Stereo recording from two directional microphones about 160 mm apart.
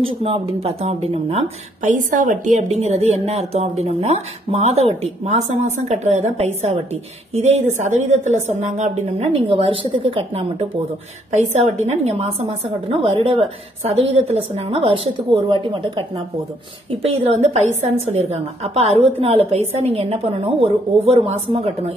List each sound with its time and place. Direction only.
0.0 s speech: 35° right (ahead or behind)